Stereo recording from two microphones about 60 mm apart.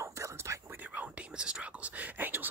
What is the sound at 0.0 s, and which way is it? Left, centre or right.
Whispering, right.